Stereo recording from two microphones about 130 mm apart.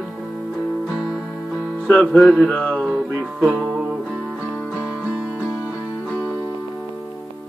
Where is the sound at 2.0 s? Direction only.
5° left (ahead or behind).